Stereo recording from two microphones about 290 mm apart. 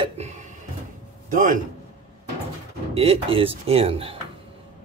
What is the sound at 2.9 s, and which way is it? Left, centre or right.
Speech, centre.